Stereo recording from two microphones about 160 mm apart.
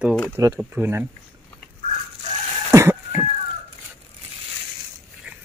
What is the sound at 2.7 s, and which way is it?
Music, 15° right (ahead or behind).